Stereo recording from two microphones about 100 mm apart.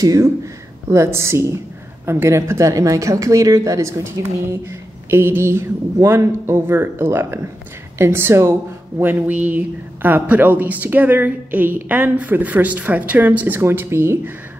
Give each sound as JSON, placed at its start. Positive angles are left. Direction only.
{"t": 0.0, "sound": "a woman's voice", "side_deg": -35}